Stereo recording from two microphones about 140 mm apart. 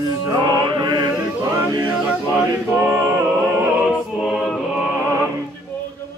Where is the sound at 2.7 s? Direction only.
10° right (ahead or behind).